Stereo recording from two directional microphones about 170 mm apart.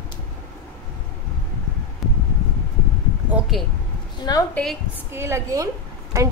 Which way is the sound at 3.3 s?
Centre (ahead or behind).